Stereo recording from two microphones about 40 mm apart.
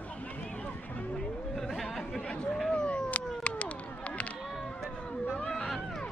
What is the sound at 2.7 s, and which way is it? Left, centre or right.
Cat, left.